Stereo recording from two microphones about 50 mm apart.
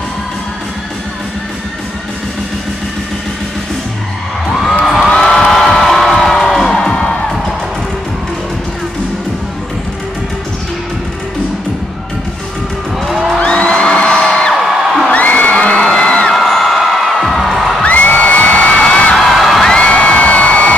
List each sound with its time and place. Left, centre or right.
4.5 s a sound: centre
5.1 s music: centre
6.8 s music: centre
13.4 s music: left
14.6 s music: centre
15.0 s whoop: left
16.3 s music: centre
17.8 s music: left
19.1 s music: centre
19.7 s music: left